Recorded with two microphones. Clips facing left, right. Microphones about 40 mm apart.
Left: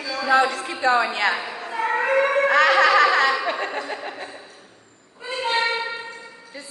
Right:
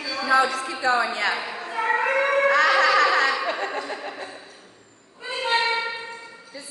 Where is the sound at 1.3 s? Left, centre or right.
Centre.